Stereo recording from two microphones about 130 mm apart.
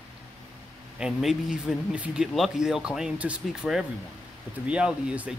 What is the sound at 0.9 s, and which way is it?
Speech, 5° right (ahead or behind).